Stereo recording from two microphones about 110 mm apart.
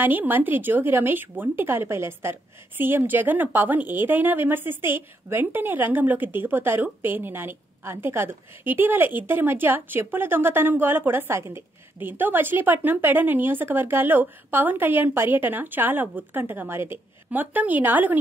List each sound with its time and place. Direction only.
0.0 s a woman's voice: 15° right (ahead or behind)